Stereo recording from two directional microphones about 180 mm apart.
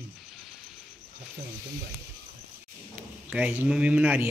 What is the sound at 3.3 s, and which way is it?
Speech, 10° right (ahead or behind).